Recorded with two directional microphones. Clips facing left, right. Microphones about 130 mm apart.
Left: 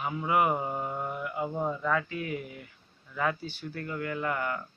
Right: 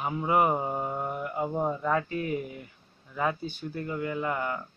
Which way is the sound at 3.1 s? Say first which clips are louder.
Right 1 dB; 20° right (ahead or behind).